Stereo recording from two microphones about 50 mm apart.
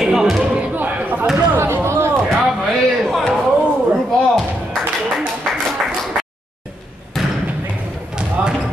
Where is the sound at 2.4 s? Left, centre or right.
Centre.